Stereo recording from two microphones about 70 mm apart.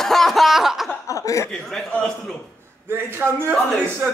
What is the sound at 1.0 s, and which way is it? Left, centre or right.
Chuckle, left.